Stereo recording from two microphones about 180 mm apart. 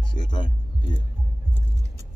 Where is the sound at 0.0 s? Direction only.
25° left (ahead or behind).